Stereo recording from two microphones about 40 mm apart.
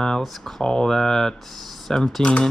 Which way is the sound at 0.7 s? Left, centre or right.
Centre.